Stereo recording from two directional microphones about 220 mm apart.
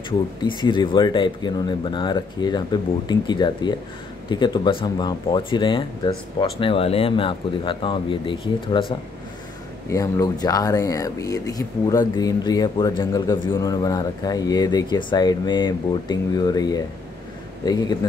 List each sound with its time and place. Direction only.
0.4 s speech: 20° left (ahead or behind)